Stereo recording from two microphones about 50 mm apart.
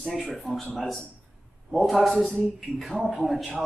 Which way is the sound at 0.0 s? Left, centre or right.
Centre.